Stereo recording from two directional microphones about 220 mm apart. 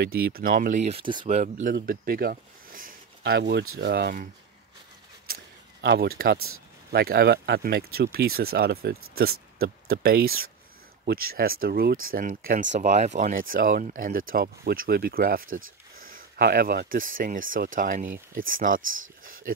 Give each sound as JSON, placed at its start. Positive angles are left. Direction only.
{"t": 0.0, "sound": "speech", "side_deg": -45}
{"t": 5.2, "sound": "a sound", "side_deg": -45}
{"t": 6.9, "sound": "speech", "side_deg": -45}